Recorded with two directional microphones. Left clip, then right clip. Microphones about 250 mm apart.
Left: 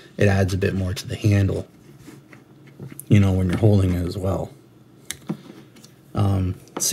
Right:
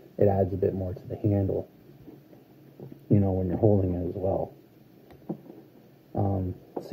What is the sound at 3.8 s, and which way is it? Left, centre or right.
Speech, left.